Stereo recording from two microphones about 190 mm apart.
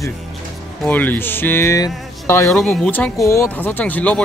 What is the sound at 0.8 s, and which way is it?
Speech, 10° left (ahead or behind).